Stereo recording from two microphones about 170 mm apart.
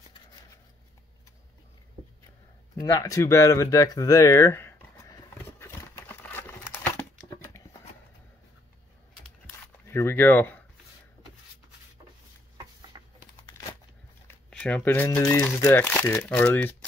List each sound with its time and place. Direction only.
2.7 s a sound: 20° left (ahead or behind)
9.8 s speech: 15° left (ahead or behind)
12.9 s computer keyboard: 20° right (ahead or behind)
14.5 s speech: 10° left (ahead or behind)